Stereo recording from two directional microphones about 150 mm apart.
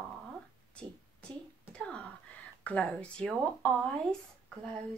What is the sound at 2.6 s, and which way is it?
Speech, 10° left (ahead or behind).